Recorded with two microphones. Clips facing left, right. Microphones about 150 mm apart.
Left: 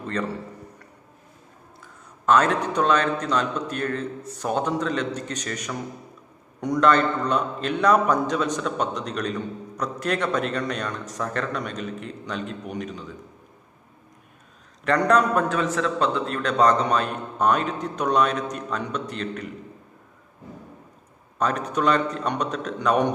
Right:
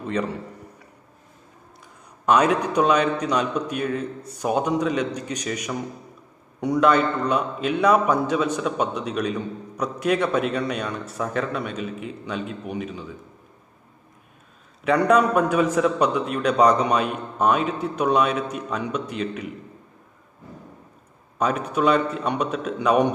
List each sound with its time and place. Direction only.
0.0 s a man's voice: 10° right (ahead or behind)
2.2 s a man's voice: 10° right (ahead or behind)
14.9 s a man's voice: 10° right (ahead or behind)
21.4 s a man's voice: 10° right (ahead or behind)